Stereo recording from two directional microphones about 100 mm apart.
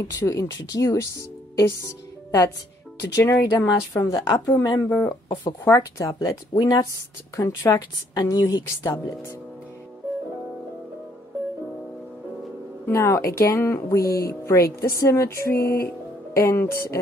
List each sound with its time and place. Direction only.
0.0 s speech: 30° left (ahead or behind)
5.3 s speech: 40° left (ahead or behind)
8.1 s speech: 40° left (ahead or behind)
12.8 s speech: 30° left (ahead or behind)